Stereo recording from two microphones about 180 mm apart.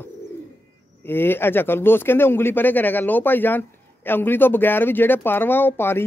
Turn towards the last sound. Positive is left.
turn(degrees=10)  # may be behind; listen again after turning